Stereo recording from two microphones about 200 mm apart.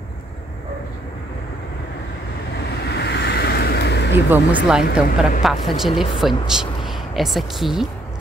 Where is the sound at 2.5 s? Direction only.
55° left (ahead or behind).